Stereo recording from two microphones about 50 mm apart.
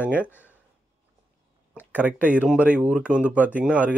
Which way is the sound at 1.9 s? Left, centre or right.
Right.